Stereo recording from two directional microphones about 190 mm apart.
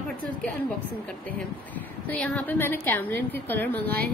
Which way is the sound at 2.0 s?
10° left (ahead or behind).